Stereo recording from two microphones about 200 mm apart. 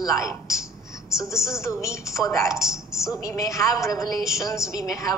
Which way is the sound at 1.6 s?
15° left (ahead or behind).